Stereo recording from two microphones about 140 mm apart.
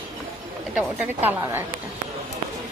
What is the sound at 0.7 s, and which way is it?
Speech, 10° right (ahead or behind).